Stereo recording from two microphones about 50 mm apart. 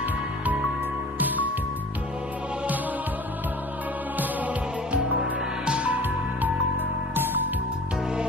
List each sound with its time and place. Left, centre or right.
5.2 s music: centre